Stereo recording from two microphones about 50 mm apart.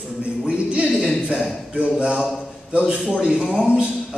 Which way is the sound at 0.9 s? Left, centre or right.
Centre.